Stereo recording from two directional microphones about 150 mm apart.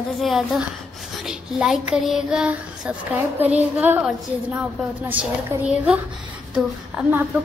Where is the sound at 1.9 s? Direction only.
5° right (ahead or behind).